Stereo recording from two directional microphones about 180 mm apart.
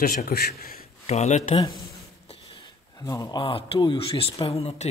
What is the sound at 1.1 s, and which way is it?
Speech, 40° left (ahead or behind).